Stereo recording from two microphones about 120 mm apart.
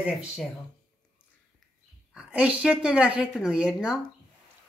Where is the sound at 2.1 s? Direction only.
10° right (ahead or behind).